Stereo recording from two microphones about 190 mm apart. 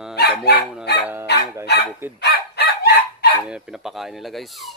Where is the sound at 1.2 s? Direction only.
60° left (ahead or behind).